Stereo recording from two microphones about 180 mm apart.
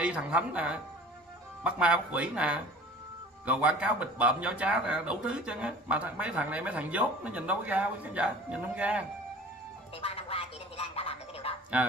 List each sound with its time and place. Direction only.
0.0 s a man's voice: 5° right (ahead or behind)
9.9 s music: 30° left (ahead or behind)